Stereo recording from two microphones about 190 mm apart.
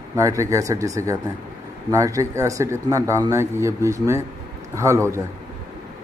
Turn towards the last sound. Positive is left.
turn(degrees=-15)  # may be behind; listen again after turning